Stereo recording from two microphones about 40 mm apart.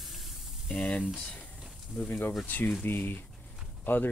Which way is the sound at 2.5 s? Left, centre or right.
Left.